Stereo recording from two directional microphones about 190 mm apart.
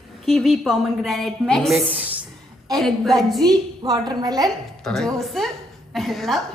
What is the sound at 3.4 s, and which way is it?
A woman's voice, 20° right (ahead or behind).